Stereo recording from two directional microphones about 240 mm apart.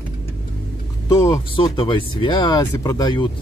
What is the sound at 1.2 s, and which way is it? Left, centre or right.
Speech, centre.